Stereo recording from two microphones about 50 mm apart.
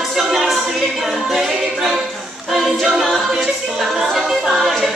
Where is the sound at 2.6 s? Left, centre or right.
Centre.